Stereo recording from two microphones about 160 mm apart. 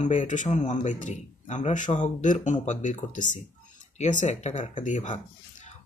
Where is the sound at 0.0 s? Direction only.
50° left (ahead or behind).